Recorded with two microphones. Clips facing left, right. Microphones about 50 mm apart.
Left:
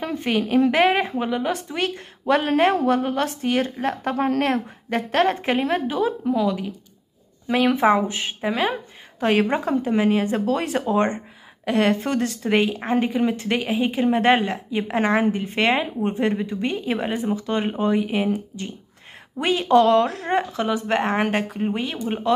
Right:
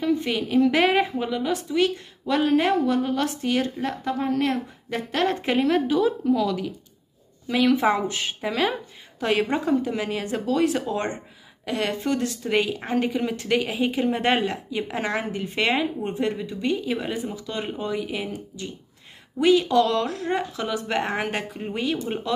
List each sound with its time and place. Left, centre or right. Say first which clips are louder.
0.0 s a woman's voice: even; left
0.7 s a woman's voice: left 1 dB; left
4.0 s a woman's voice: left 2 dB; left; by 6.7 s centre
7.4 s a woman's voice: left 2 dB; left; by 8.7 s centre
9.2 s a woman's voice: left 3 dB; left
13.1 s a woman's voice: left 2 dB; centre